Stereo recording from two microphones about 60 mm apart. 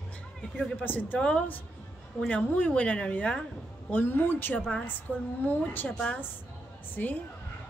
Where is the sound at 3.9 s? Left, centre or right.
Left.